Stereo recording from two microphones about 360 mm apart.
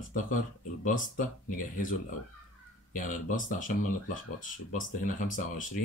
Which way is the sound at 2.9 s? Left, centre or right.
Left.